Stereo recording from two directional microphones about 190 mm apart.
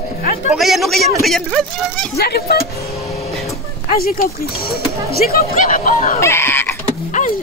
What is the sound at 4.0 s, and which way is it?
Speech, 50° left (ahead or behind).